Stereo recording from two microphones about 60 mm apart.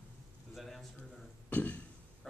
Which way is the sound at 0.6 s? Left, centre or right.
Centre.